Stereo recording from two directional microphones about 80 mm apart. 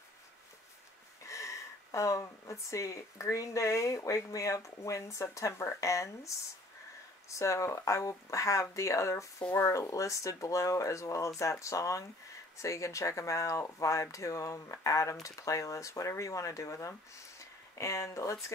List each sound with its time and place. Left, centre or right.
1.2 s speech: left